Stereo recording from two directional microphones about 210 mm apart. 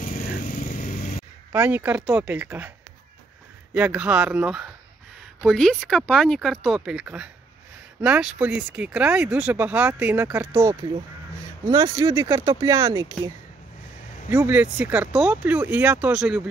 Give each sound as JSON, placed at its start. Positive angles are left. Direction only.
{"t": 0.0, "sound": "vehicle", "side_deg": 40}
{"t": 1.5, "sound": "speech", "side_deg": -10}
{"t": 3.7, "sound": "speech", "side_deg": -5}
{"t": 14.3, "sound": "speech", "side_deg": -10}